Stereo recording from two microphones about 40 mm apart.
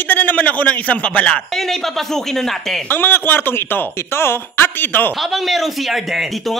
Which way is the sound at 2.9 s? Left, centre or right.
Left.